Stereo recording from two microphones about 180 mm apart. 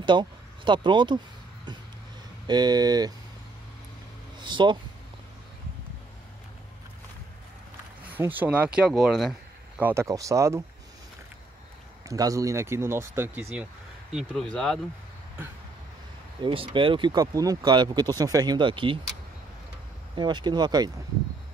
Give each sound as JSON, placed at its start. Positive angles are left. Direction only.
{"t": 0.0, "sound": "speech", "side_deg": -25}
{"t": 2.4, "sound": "speech", "side_deg": -25}
{"t": 4.4, "sound": "speech", "side_deg": -25}
{"t": 8.2, "sound": "speech", "side_deg": -10}
{"t": 9.8, "sound": "speech", "side_deg": -10}
{"t": 12.1, "sound": "speech", "side_deg": -20}
{"t": 14.1, "sound": "speech", "side_deg": 5}
{"t": 16.3, "sound": "speech", "side_deg": -30}
{"t": 20.2, "sound": "speech", "side_deg": -25}